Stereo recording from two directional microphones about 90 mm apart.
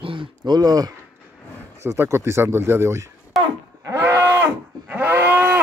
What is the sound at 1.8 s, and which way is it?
Speech, 30° right (ahead or behind).